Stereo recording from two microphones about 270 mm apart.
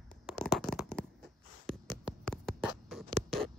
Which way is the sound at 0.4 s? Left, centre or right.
Centre.